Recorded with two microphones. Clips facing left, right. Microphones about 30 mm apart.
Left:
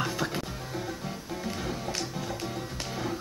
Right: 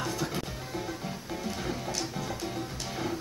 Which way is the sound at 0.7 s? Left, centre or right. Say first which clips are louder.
Even; centre.